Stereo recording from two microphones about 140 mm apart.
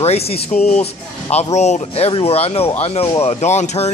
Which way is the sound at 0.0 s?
50° left (ahead or behind).